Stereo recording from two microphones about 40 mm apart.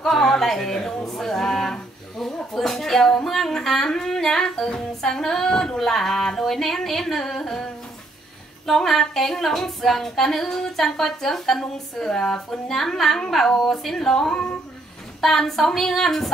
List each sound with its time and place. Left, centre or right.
0.0 s speech: centre
15.1 s a woman's voice: centre